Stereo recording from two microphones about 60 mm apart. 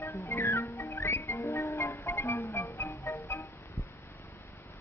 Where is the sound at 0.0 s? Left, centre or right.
Left.